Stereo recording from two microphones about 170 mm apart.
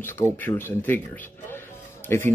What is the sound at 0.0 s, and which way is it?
Speech, 15° left (ahead or behind).